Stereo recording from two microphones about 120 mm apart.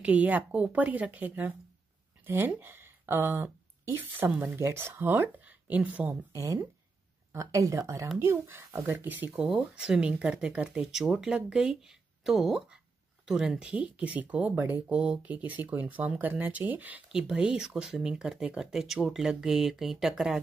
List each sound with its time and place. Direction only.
0.0 s speech: 10° right (ahead or behind)
6.3 s speech: 25° right (ahead or behind); by 20.3 s 5° right (ahead or behind)